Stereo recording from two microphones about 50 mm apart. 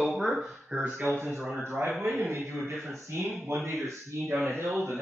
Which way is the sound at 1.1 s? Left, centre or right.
Right.